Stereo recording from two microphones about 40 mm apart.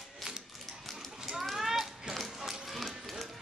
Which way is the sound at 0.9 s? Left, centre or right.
Centre.